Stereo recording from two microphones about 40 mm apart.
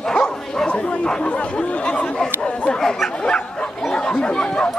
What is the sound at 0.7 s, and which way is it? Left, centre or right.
Chatter, left.